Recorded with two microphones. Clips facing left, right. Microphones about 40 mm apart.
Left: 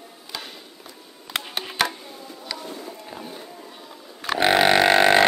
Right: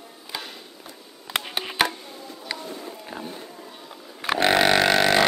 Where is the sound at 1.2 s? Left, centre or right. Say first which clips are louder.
Right 1 dB; centre.